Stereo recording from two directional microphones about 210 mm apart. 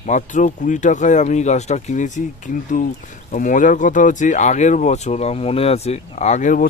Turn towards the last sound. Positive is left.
turn(degrees=35)  # may be behind; listen again after turning